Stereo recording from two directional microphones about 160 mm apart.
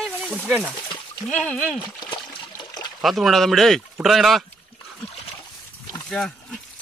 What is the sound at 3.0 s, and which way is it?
Speech, centre (ahead or behind).